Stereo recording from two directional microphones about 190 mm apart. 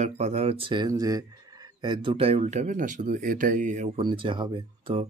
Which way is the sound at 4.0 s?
25° right (ahead or behind).